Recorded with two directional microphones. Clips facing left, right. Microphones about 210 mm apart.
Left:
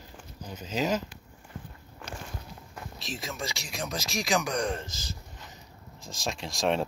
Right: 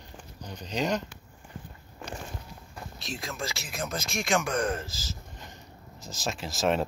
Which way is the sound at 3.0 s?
Centre (ahead or behind).